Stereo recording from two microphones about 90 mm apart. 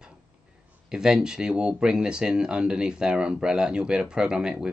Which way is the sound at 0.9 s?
5° right (ahead or behind).